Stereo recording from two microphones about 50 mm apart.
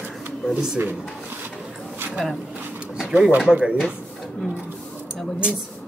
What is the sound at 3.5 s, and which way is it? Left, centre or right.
Speech, right.